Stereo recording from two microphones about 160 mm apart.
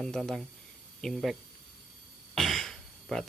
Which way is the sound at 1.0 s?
Centre (ahead or behind).